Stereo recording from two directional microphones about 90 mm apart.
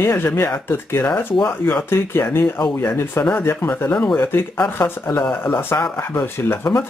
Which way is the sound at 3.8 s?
15° left (ahead or behind).